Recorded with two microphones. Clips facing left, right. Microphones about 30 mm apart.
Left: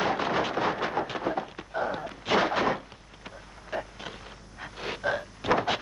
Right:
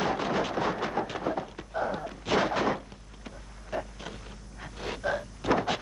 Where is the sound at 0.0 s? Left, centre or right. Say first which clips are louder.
Left 2 dB; centre.